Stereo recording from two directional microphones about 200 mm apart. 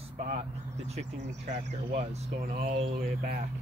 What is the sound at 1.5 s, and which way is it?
Speech, 40° right (ahead or behind).